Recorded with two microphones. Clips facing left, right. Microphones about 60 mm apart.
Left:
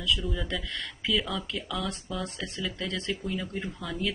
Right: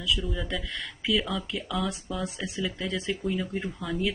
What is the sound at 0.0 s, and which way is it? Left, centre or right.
Speech, centre.